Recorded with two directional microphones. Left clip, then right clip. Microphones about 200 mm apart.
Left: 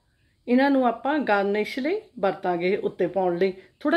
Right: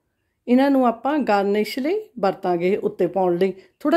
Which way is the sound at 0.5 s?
35° right (ahead or behind).